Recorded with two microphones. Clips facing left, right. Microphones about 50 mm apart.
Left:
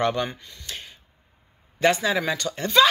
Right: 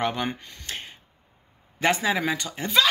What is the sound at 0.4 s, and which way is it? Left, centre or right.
Speech, right.